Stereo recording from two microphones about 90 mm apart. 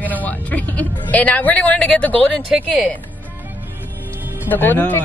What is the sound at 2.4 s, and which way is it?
Speech, 10° right (ahead or behind).